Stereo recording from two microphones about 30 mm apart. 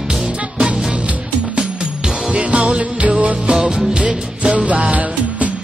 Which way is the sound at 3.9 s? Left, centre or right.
Right.